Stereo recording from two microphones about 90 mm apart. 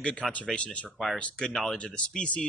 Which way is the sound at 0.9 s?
Centre (ahead or behind).